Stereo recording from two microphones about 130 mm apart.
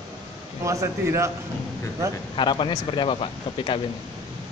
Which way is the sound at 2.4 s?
40° left (ahead or behind).